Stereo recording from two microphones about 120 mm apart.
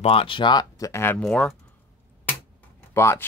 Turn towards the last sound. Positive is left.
turn(degrees=20)  # may be behind; listen again after turning